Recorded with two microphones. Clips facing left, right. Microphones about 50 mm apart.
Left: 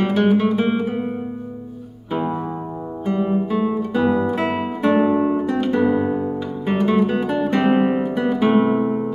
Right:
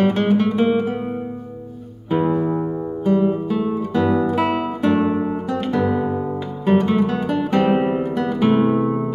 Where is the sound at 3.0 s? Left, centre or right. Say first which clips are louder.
Right 2 dB; centre.